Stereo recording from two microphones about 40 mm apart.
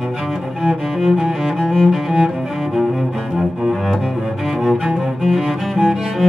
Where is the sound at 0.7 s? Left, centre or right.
Centre.